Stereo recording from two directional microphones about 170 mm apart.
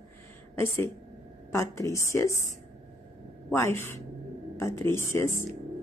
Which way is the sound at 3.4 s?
15° left (ahead or behind).